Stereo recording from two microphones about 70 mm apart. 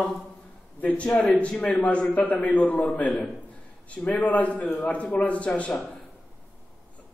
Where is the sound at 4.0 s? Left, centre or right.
Centre.